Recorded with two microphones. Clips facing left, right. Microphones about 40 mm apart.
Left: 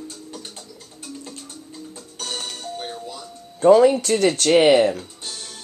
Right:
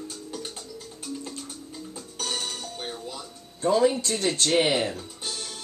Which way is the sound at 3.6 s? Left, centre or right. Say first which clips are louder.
Left 9 dB; left.